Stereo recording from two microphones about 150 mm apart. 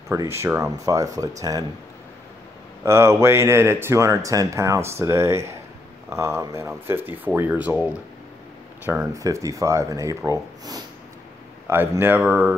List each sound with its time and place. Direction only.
0.1 s speech: 20° right (ahead or behind)
2.8 s speech: 20° right (ahead or behind)
9.1 s speech: 20° right (ahead or behind)